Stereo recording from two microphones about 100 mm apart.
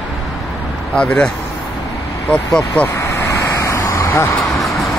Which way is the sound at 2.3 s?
10° left (ahead or behind).